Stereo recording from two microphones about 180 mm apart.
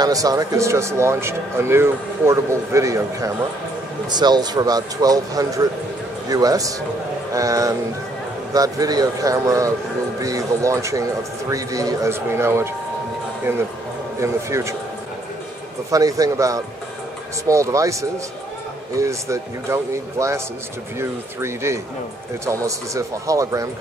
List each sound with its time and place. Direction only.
0.0 s a man's voice: 20° right (ahead or behind)
14.2 s speech: 15° right (ahead or behind)
15.9 s speech: 20° right (ahead or behind)
18.9 s speech: 15° right (ahead or behind)